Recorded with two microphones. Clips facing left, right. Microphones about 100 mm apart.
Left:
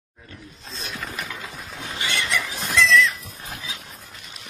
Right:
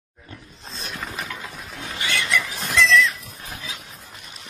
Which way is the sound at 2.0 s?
25° left (ahead or behind).